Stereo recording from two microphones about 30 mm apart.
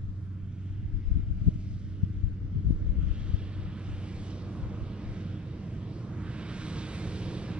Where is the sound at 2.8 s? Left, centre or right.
Right.